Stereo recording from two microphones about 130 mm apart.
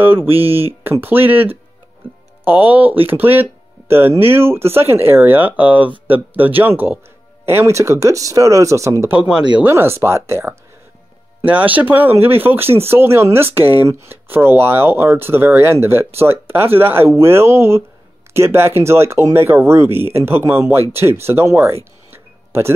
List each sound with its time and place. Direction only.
0.0 s speech: 15° right (ahead or behind)
9.1 s speech: 10° right (ahead or behind)
22.1 s a sound: 20° right (ahead or behind)